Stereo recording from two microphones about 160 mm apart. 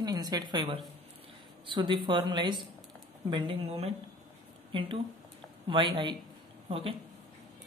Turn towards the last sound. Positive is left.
turn(degrees=-35)  # may be behind; listen again after turning